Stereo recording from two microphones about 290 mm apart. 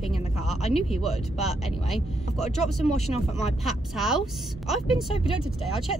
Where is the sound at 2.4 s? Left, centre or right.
Left.